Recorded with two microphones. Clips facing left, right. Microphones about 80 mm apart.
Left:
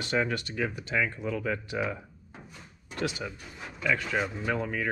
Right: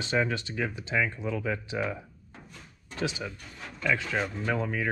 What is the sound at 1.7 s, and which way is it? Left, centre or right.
Drawer open or close, centre.